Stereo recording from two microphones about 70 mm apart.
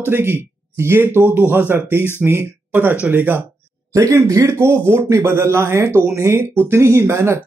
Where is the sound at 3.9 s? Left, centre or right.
Right.